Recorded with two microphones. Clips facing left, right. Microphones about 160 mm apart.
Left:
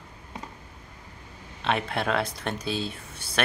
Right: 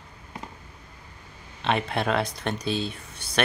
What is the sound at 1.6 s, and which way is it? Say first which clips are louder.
Speech: right 2 dB; centre (ahead or behind).